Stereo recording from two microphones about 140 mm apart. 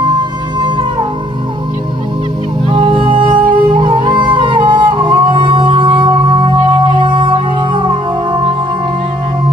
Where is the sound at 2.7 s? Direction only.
40° right (ahead or behind).